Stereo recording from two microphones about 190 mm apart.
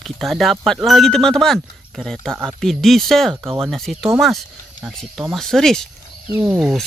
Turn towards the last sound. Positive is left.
turn(degrees=-5)  # may be behind; listen again after turning